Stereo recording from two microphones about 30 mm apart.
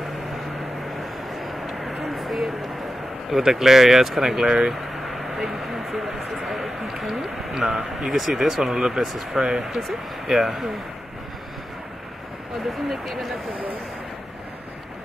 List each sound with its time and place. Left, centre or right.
1.3 s vehicle: centre
3.3 s speech: centre
4.9 s vehicle: centre
5.6 s speech: centre
8.7 s speech: right
9.0 s speech: centre
12.8 s speech: centre